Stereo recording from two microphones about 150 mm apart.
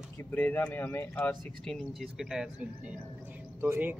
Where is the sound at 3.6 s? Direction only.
15° right (ahead or behind).